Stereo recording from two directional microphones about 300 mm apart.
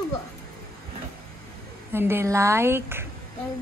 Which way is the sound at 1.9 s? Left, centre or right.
Centre.